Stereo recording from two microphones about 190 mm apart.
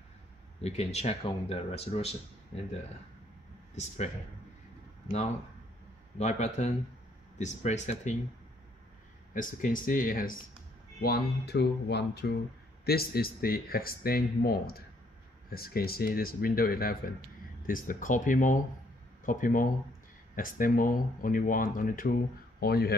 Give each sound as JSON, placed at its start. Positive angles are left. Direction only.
{"t": 0.6, "sound": "speech", "side_deg": 35}
{"t": 3.7, "sound": "speech", "side_deg": 40}
{"t": 6.1, "sound": "speech", "side_deg": 35}
{"t": 9.3, "sound": "speech", "side_deg": 45}